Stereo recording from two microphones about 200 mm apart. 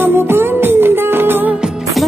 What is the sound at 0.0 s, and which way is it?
Music, 10° right (ahead or behind).